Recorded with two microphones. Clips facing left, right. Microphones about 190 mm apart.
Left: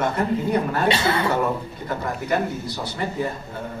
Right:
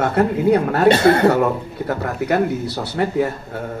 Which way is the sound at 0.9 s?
50° right (ahead or behind).